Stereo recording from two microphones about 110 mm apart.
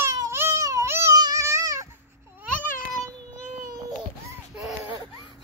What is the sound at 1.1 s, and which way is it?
Music, 35° right (ahead or behind).